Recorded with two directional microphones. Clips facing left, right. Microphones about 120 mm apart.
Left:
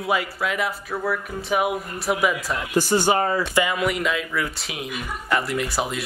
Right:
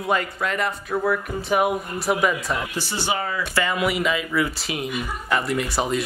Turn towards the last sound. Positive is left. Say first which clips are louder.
# right 2 dB
turn(degrees=0)  # may be behind; listen again after turning